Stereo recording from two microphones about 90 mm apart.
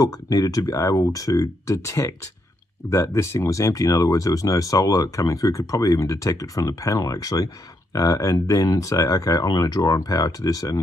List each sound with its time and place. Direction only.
0.0 s speech: 40° left (ahead or behind)